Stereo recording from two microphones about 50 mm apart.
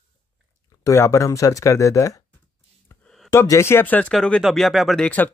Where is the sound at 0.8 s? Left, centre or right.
Left.